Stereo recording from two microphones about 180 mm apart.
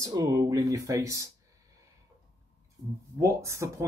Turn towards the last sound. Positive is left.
turn(degrees=-15)  # may be behind; listen again after turning